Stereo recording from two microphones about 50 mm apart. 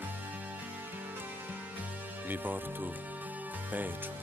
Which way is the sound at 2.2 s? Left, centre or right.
Right.